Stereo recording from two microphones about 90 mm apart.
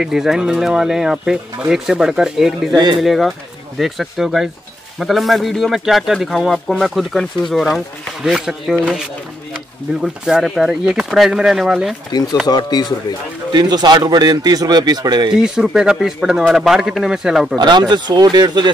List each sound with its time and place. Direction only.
0.0 s a man's voice: 5° right (ahead or behind)
2.7 s a man's voice: 55° right (ahead or behind)
3.0 s a man's voice: centre (ahead or behind)
10.0 s a man's voice: 5° right (ahead or behind)
12.1 s speech: 45° left (ahead or behind)
13.5 s a man's voice: 50° right (ahead or behind)
15.3 s a man's voice: 5° right (ahead or behind)
17.6 s speech: 55° right (ahead or behind)